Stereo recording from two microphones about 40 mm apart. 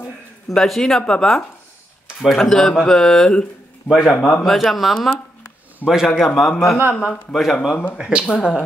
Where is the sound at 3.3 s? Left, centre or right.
Left.